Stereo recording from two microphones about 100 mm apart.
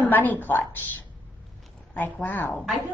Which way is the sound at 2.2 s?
15° left (ahead or behind).